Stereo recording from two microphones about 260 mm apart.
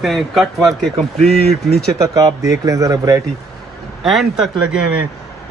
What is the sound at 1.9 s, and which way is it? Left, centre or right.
Speech, centre.